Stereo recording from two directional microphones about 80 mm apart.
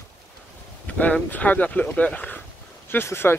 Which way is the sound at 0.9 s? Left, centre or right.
Centre.